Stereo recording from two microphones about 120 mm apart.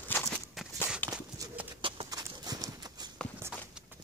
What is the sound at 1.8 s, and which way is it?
Clip-clop, 45° right (ahead or behind).